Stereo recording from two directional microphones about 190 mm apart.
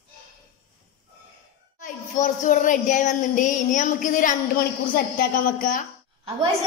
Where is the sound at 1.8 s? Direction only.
40° left (ahead or behind).